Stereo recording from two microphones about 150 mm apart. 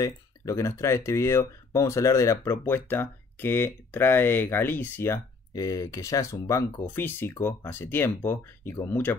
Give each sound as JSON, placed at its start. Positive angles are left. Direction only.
{"t": 0.0, "sound": "speech", "side_deg": 20}